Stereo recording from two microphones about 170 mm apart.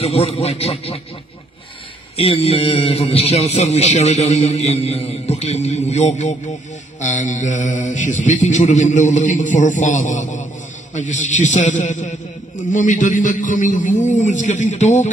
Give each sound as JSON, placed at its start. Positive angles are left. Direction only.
{"t": 0.0, "sound": "a man's voice", "side_deg": 35}
{"t": 2.1, "sound": "a man's voice", "side_deg": 35}